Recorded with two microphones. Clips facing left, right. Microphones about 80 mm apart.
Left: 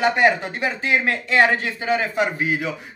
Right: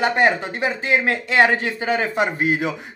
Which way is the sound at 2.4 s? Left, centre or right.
Right.